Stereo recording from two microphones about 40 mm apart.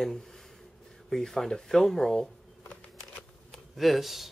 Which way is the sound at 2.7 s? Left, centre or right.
Left.